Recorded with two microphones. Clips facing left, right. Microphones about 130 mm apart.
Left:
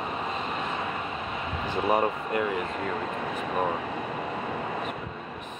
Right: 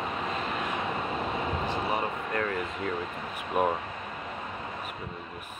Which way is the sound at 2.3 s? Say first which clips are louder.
Left 2 dB; 20° left (ahead or behind).